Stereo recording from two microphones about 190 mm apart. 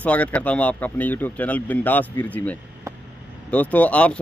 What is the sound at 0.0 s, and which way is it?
Speech, 5° left (ahead or behind).